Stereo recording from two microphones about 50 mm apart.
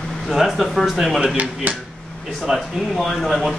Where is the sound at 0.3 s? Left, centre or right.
Centre.